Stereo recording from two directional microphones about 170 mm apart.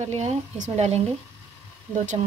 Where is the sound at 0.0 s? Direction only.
40° right (ahead or behind).